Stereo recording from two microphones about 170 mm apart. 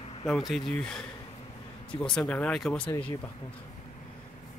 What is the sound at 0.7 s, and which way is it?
A man's voice, 5° left (ahead or behind).